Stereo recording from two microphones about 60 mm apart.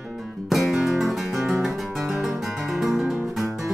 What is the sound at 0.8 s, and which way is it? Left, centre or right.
Guitar, centre.